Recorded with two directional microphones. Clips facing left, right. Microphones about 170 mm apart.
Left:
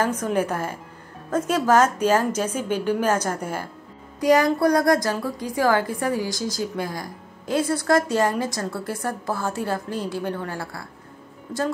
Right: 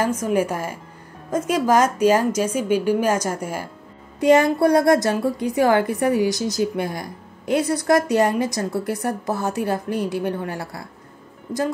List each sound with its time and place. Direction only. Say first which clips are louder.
0.2 s speech: right 2 dB; 10° right (ahead or behind)
4.2 s a woman's voice: right 3 dB; 25° right (ahead or behind)